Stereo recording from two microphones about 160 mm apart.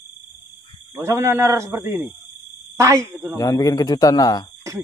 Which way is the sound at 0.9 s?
20° right (ahead or behind).